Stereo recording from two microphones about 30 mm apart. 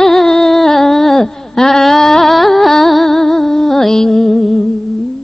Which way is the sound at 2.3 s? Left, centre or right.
Centre.